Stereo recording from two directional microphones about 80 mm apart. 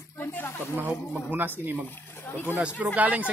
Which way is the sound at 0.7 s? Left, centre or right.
Right.